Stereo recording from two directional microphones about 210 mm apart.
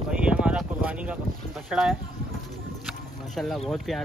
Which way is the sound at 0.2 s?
5° right (ahead or behind).